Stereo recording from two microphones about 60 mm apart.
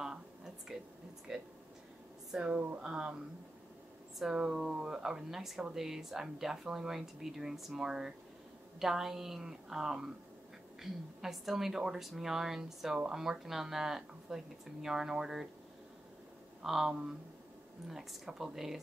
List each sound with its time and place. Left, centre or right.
1.3 s speech: centre
4.2 s speech: centre
16.6 s speech: centre